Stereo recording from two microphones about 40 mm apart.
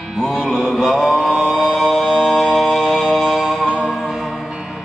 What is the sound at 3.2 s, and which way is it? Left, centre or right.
Music, centre.